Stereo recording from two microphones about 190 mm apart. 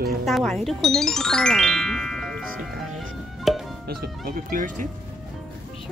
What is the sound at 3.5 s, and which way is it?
Music, centre (ahead or behind).